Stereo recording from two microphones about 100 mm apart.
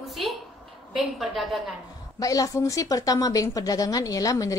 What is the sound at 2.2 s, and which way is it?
A woman's voice, 35° left (ahead or behind).